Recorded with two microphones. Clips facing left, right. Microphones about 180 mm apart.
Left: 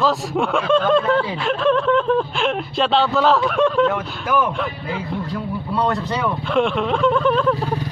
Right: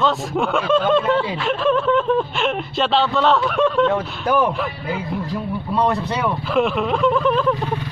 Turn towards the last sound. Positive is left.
turn(degrees=0)  # may be behind; listen again after turning